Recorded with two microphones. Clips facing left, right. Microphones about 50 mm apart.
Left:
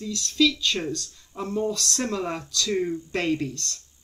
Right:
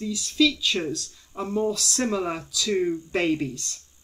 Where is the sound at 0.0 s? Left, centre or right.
Centre.